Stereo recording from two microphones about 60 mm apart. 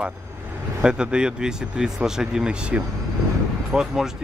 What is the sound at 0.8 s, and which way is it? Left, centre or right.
Speech, centre.